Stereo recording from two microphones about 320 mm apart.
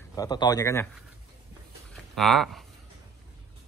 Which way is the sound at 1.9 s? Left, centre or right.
Centre.